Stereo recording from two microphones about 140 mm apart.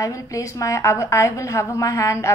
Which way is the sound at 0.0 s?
25° left (ahead or behind).